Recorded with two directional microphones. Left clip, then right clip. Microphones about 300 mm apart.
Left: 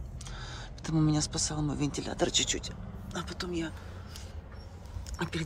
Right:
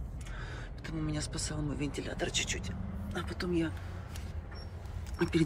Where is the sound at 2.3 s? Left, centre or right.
Left.